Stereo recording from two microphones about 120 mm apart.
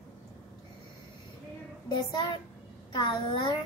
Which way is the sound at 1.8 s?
40° left (ahead or behind).